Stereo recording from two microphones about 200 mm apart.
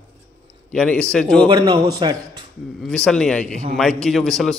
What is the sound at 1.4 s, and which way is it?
Speech, 20° right (ahead or behind).